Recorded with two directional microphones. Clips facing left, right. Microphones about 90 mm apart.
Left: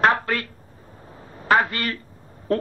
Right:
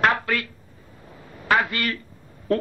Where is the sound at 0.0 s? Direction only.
35° left (ahead or behind).